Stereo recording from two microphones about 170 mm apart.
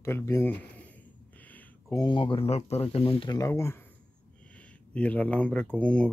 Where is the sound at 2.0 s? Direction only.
30° left (ahead or behind).